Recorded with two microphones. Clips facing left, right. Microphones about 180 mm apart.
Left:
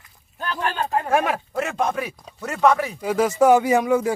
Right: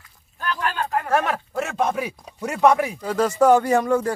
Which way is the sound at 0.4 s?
25° left (ahead or behind).